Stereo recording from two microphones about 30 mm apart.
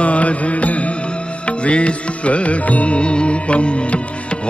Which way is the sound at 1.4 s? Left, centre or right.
Left.